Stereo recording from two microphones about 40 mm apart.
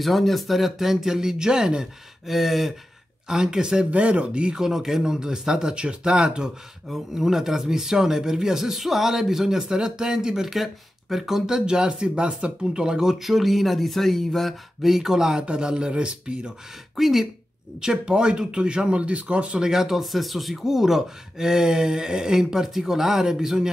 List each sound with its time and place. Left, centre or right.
0.0 s speech: centre
2.2 s speech: centre
3.3 s speech: centre
3.9 s speech: right
4.6 s speech: centre
6.9 s speech: centre; by 12.8 s right
12.8 s speech: centre
16.9 s speech: centre
17.7 s speech: centre
19.6 s speech: centre